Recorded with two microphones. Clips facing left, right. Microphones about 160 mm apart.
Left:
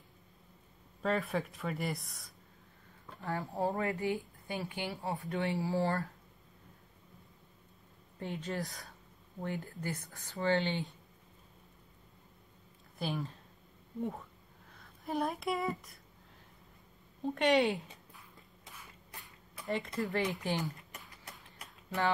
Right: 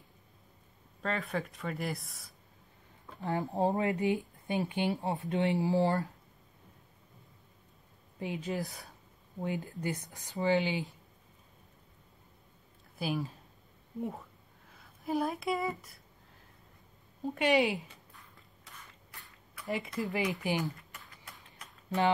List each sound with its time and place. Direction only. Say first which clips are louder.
1.0 s speech: left 2 dB; centre (ahead or behind)
3.2 s speech: right 4 dB; 20° right (ahead or behind)
8.2 s speech: right 3 dB; 10° right (ahead or behind)
9.4 s speech: right 3 dB; 15° right (ahead or behind)
12.9 s speech: right 3 dB; 5° right (ahead or behind)
14.7 s speech: right 4 dB; centre (ahead or behind)
17.2 s speech: right 1 dB; 5° right (ahead or behind)
19.1 s a sound: left 2 dB; 20° left (ahead or behind)
19.6 s speech: even; centre (ahead or behind)
20.1 s speech: right 3 dB; 15° right (ahead or behind)